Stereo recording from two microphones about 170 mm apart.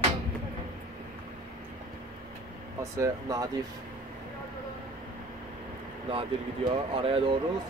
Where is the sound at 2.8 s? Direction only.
20° right (ahead or behind).